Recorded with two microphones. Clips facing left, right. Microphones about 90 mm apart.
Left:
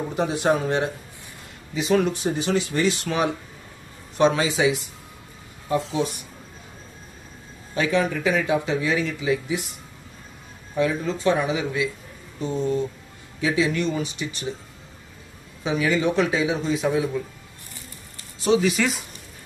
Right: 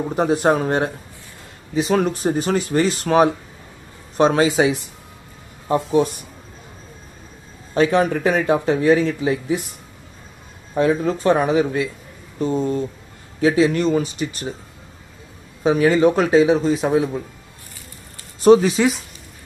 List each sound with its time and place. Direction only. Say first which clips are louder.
0.1 s a man's voice: right 5 dB; 40° right (ahead or behind)
7.7 s speech: right 6 dB; 45° right (ahead or behind)
10.7 s a man's voice: right 5 dB; 45° right (ahead or behind)
15.6 s a man's voice: right 7 dB; 45° right (ahead or behind)
18.4 s speech: right 8 dB; 45° right (ahead or behind)